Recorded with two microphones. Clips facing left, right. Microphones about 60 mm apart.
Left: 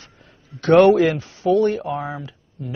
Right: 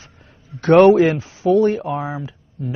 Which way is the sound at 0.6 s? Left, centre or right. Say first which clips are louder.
Right 2 dB; centre.